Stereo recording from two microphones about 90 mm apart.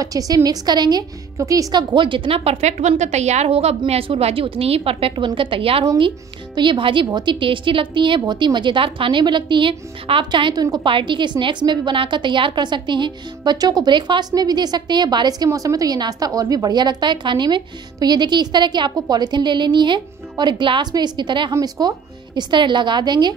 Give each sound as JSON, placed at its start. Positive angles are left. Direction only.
{"t": 0.0, "sound": "a woman's voice", "side_deg": -45}
{"t": 1.7, "sound": "a woman's voice", "side_deg": -55}
{"t": 3.4, "sound": "a woman's voice", "side_deg": -90}
{"t": 5.9, "sound": "a woman's voice", "side_deg": -65}
{"t": 7.1, "sound": "a woman's voice", "side_deg": -55}
{"t": 10.5, "sound": "a woman's voice", "side_deg": -45}
{"t": 10.9, "sound": "a woman's voice", "side_deg": -65}
{"t": 21.5, "sound": "a woman's voice", "side_deg": -45}